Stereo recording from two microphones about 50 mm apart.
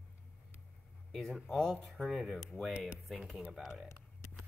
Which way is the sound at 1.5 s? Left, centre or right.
Centre.